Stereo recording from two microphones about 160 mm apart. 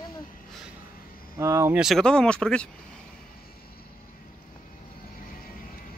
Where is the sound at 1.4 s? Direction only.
15° right (ahead or behind).